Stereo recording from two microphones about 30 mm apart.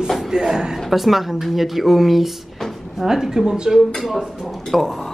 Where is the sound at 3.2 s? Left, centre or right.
Centre.